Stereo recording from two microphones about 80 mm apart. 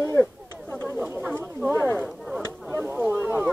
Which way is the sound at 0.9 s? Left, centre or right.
Right.